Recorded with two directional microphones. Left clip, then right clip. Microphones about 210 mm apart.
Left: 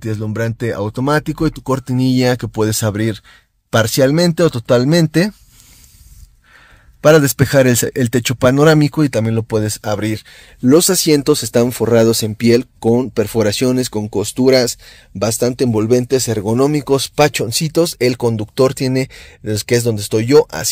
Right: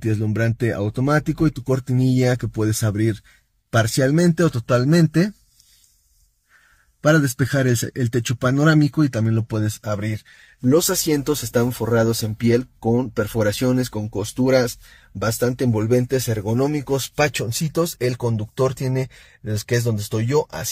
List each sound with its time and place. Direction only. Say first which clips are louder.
0.0 s speech: left 2 dB; 15° left (ahead or behind); by 5.3 s 35° left (ahead or behind)
7.0 s speech: left 8 dB; 45° left (ahead or behind)